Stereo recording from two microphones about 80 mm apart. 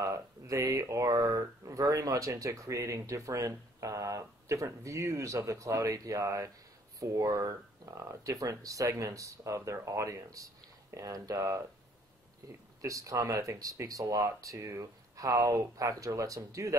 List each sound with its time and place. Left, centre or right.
0.0 s speech: right